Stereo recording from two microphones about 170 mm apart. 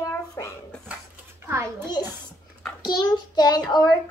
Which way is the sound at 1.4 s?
15° right (ahead or behind).